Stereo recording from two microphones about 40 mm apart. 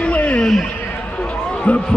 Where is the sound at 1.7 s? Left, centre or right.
Left.